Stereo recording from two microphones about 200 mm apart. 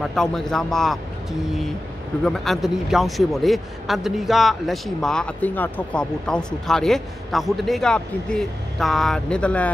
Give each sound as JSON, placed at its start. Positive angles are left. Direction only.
{"t": 0.0, "sound": "a man's voice", "side_deg": 0}
{"t": 2.2, "sound": "a man's voice", "side_deg": 0}